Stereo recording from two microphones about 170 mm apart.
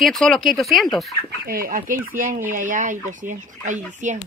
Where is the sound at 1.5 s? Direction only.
55° right (ahead or behind).